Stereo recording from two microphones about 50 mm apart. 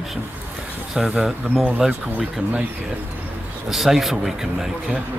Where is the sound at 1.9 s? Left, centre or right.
Right.